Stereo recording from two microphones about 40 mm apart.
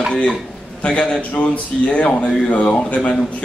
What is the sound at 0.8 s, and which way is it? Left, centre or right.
A man's voice, left.